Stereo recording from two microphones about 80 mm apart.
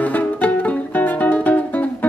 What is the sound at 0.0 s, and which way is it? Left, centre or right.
Music, left.